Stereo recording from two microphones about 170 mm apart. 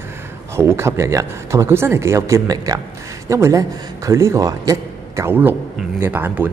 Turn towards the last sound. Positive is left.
turn(degrees=-10)  # may be behind; listen again after turning